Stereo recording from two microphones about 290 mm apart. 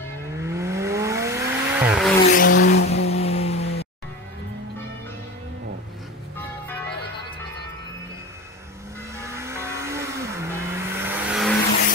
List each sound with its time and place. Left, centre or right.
0.4 s vehicle: centre
2.3 s vehicle: left
2.9 s vehicle: left
9.2 s vehicle: centre